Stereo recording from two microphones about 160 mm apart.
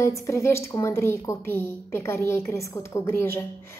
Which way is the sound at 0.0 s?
20° left (ahead or behind).